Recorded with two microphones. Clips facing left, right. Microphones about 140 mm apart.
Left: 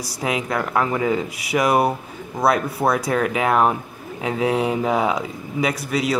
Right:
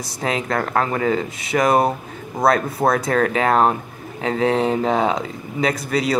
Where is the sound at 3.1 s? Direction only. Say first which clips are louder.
Right 2 dB; 10° left (ahead or behind).